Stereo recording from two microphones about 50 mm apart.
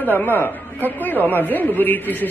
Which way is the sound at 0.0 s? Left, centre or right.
Left.